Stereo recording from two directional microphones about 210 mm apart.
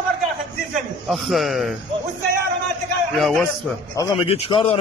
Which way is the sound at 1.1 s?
Centre (ahead or behind).